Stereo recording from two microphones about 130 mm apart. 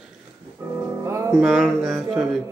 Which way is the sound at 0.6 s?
20° right (ahead or behind).